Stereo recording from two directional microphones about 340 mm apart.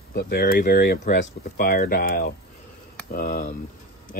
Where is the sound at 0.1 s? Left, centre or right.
Left.